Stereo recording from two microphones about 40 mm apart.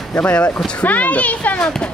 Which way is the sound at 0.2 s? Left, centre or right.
Left.